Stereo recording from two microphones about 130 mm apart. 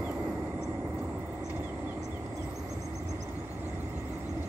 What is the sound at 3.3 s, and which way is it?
Vehicle, 15° right (ahead or behind).